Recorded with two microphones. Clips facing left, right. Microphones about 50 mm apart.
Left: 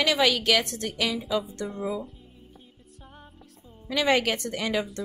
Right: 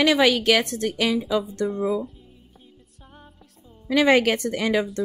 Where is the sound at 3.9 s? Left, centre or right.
Right.